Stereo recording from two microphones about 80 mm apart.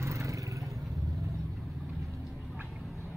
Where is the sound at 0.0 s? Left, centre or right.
Right.